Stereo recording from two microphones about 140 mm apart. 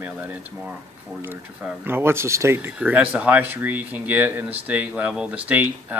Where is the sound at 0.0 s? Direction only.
10° right (ahead or behind).